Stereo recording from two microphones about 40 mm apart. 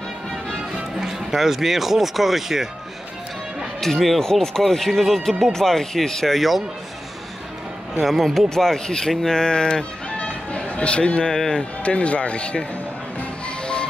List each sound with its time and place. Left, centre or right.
0.9 s speech: centre
3.8 s speech: centre
8.0 s speech: centre
8.5 s speech: centre
10.1 s music: left
11.2 s speech: centre
11.8 s speech: left